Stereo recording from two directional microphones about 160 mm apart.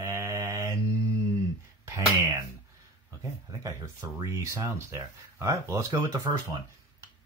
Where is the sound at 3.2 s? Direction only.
20° right (ahead or behind).